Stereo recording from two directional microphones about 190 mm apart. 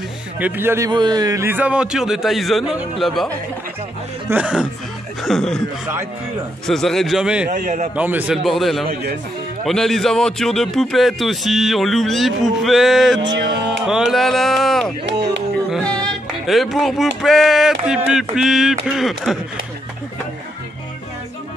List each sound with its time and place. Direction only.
0.4 s speech: 10° right (ahead or behind)
6.7 s speech: centre (ahead or behind)
7.4 s a man's voice: 40° right (ahead or behind)
7.9 s speech: 10° right (ahead or behind)
13.3 s music: 65° right (ahead or behind)
13.8 s speech: 5° right (ahead or behind)
15.7 s music: 5° left (ahead or behind)
17.2 s speech: centre (ahead or behind)